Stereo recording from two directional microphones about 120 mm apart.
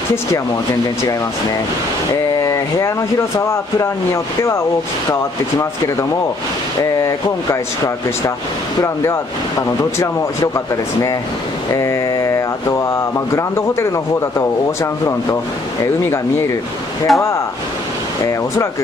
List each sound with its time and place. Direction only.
2.3 s speech: 25° left (ahead or behind)
6.8 s speech: 25° left (ahead or behind)
8.8 s speech: 25° left (ahead or behind)
11.7 s speech: 25° left (ahead or behind)
17.1 s speech: centre (ahead or behind)